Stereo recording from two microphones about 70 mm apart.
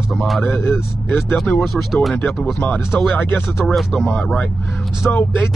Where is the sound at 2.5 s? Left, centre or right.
Left.